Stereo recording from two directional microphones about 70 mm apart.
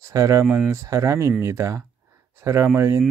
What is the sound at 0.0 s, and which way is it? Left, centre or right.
Speech, right.